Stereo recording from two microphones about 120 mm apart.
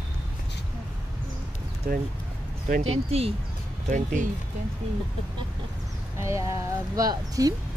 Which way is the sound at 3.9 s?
90° right.